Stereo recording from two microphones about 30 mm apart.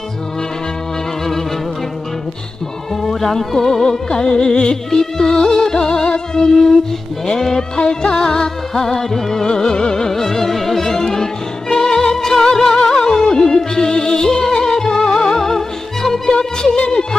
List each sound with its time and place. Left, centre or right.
3.0 s speech: centre
4.1 s music: left
8.7 s music: centre
12.7 s music: left
16.3 s music: left